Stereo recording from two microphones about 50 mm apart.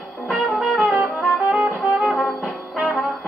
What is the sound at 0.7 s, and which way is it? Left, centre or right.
Music, right.